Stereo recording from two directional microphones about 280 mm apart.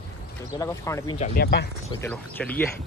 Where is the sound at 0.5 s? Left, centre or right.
Centre.